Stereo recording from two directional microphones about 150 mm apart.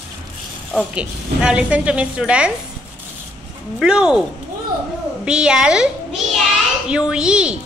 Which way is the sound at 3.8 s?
5° right (ahead or behind).